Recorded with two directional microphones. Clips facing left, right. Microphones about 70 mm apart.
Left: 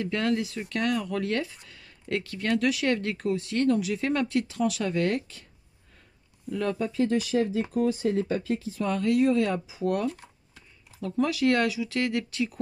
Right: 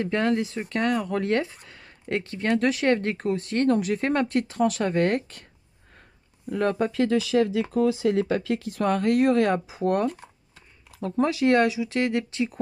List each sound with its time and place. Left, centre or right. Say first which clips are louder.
0.0 s speech: right 3 dB; right
6.5 s speech: right 4 dB; right
6.9 s speech: right 3 dB; right